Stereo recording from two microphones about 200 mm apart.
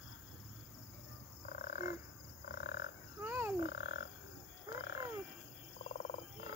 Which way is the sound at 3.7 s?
55° left (ahead or behind).